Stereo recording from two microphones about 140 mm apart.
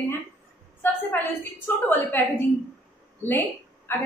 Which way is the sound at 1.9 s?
15° left (ahead or behind).